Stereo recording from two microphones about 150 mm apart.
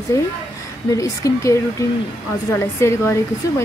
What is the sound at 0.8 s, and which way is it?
Speech, 20° left (ahead or behind).